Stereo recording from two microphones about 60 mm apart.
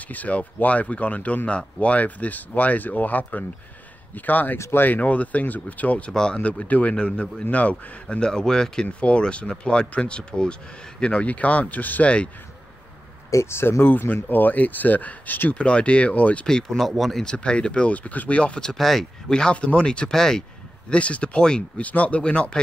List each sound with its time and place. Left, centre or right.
0.1 s speech: left
4.6 s speech: left
4.8 s speech: left
13.3 s speech: left
15.5 s speech: centre
16.4 s speech: centre
17.2 s speech: centre
18.4 s speech: centre
20.9 s speech: centre